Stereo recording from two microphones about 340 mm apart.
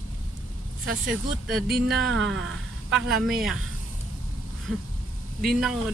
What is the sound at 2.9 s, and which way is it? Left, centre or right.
Speech, centre.